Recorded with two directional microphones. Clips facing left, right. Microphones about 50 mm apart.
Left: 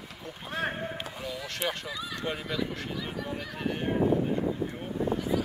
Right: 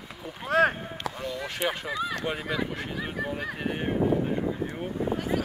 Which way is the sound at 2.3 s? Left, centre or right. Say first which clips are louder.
Right 3 dB; right.